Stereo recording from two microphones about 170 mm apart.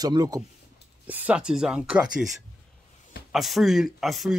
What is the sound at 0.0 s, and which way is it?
Speech, 20° right (ahead or behind).